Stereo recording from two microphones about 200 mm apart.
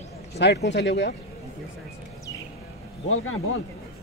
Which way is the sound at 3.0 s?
90° left.